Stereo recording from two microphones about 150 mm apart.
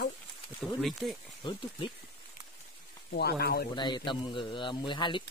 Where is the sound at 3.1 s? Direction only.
90° left.